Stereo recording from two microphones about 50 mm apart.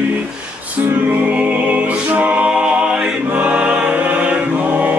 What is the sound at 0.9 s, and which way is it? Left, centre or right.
Music, right.